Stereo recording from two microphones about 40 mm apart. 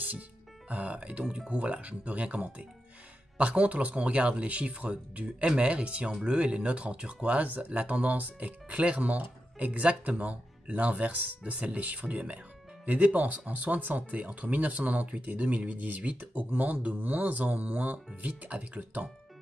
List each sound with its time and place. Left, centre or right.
0.7 s speech: right
1.2 s speech: centre
1.5 s speech: right